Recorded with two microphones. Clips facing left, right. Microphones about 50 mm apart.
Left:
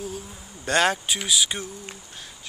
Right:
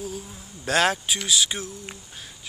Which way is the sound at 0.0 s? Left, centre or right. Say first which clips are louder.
Even; centre.